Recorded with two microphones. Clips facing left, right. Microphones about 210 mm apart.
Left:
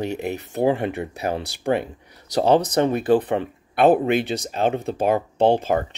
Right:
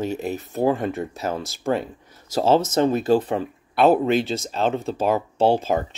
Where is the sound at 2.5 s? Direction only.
15° left (ahead or behind).